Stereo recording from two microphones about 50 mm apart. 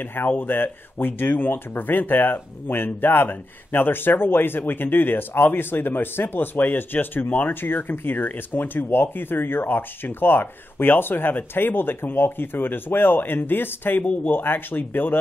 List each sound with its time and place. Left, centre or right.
0.0 s speech: left